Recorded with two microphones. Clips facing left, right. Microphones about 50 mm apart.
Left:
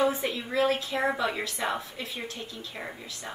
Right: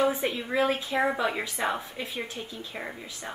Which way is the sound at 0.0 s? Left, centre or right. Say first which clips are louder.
Right 1 dB; centre.